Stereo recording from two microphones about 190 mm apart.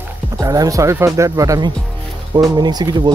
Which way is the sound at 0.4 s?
20° right (ahead or behind).